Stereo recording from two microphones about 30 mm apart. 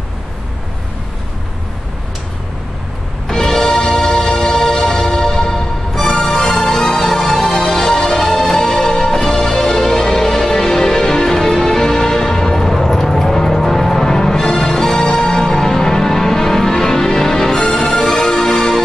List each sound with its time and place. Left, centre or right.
3.3 s music: centre